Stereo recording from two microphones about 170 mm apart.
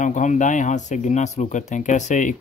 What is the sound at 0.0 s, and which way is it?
Speech, 45° left (ahead or behind).